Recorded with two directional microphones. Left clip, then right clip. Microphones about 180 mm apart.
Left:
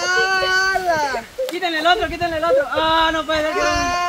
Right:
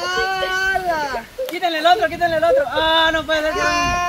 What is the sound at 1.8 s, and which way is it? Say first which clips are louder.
A man's voice: right 3 dB; 65° right (ahead or behind).